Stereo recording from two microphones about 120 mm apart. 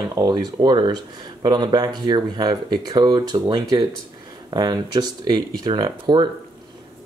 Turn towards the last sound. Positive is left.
turn(degrees=-35)  # may be behind; listen again after turning